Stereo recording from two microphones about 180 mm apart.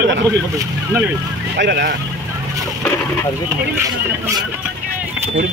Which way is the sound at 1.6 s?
70° right (ahead or behind).